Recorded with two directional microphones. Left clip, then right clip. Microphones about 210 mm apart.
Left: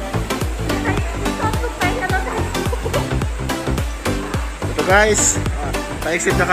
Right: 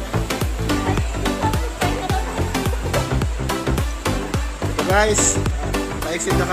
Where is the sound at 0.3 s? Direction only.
Centre (ahead or behind).